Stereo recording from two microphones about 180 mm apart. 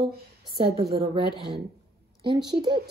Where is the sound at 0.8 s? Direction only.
60° right (ahead or behind).